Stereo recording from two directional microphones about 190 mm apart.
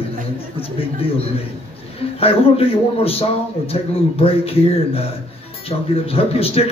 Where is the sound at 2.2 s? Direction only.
30° left (ahead or behind).